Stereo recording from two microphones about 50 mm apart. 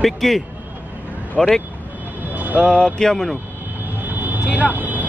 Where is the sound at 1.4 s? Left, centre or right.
Centre.